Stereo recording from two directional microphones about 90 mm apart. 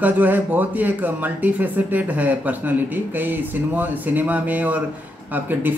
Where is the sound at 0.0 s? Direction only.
20° right (ahead or behind).